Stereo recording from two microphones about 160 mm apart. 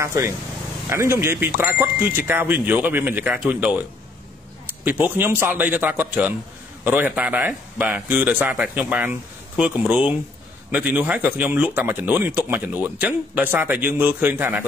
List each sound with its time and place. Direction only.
0.0 s speech: 20° right (ahead or behind)
4.8 s speech: 10° right (ahead or behind)